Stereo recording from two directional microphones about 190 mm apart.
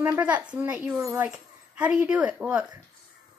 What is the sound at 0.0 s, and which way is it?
A woman's voice, 10° right (ahead or behind).